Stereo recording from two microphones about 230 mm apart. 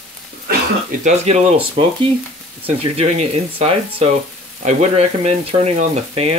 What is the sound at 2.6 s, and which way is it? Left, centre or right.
Speech, right.